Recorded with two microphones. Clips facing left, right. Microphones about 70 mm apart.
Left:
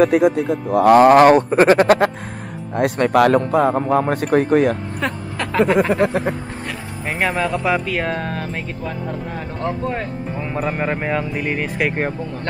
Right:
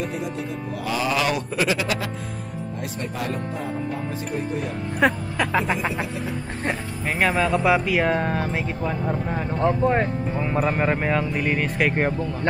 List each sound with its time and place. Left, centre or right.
0.0 s speech: left
2.7 s speech: left
5.0 s speech: centre
5.8 s speech: left
7.1 s speech: centre
9.6 s speech: right
10.4 s speech: centre